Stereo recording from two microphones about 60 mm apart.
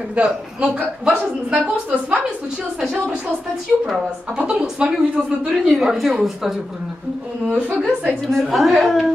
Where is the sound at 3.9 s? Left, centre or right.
Centre.